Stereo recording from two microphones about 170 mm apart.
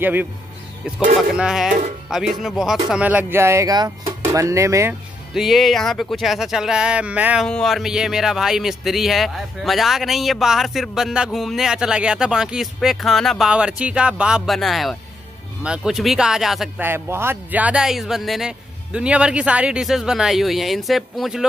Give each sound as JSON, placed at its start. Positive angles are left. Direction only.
{"t": 0.0, "sound": "speech", "side_deg": -10}
{"t": 5.3, "sound": "speech", "side_deg": 0}
{"t": 7.4, "sound": "speech", "side_deg": 5}